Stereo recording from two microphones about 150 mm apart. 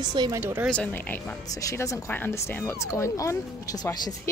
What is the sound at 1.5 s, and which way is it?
Speech, 20° left (ahead or behind).